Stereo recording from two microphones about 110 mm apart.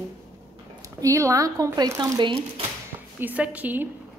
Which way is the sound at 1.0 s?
30° right (ahead or behind).